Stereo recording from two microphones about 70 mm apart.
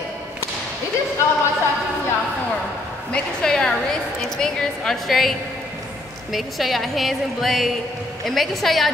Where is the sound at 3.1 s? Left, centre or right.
Centre.